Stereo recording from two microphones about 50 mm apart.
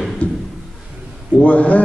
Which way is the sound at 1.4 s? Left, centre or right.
Left.